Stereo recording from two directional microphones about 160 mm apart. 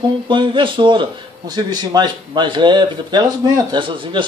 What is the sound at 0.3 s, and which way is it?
A man's voice, 30° right (ahead or behind).